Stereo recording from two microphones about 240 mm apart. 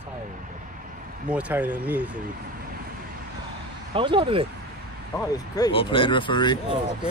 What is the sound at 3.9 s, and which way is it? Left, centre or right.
Speech, right.